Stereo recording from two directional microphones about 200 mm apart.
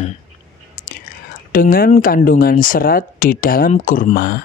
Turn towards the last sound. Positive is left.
turn(degrees=45)  # may be behind; listen again after turning